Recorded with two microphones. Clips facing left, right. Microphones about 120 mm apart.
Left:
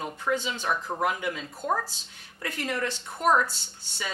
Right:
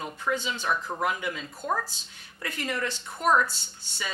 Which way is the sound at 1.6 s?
30° left (ahead or behind).